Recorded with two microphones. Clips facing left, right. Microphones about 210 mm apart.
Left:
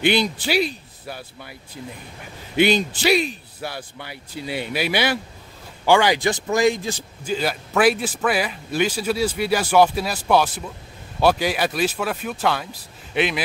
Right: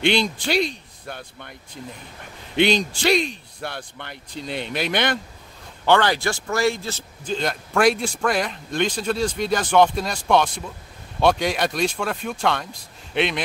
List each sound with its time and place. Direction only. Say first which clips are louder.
0.0 s a man's voice: left 1 dB; 5° left (ahead or behind)